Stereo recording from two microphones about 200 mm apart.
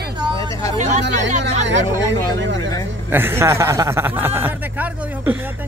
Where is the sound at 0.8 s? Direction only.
35° right (ahead or behind).